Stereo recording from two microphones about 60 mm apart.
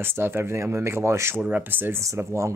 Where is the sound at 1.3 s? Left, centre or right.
Right.